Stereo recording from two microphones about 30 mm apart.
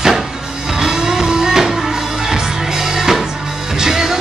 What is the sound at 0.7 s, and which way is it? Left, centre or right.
Music, centre.